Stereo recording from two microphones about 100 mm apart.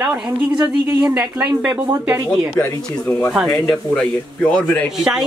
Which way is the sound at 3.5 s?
5° left (ahead or behind).